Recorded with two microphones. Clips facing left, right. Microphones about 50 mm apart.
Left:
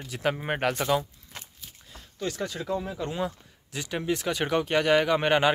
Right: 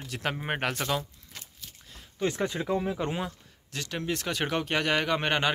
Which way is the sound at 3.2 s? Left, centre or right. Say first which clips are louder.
Left 5 dB; centre.